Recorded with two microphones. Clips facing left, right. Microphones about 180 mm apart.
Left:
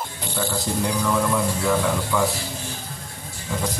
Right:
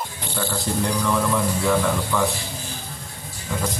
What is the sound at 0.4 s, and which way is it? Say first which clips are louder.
Speech: even; 5° left (ahead or behind).